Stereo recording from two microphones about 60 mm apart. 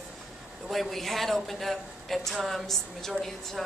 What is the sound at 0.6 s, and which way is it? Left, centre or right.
A woman's voice, centre.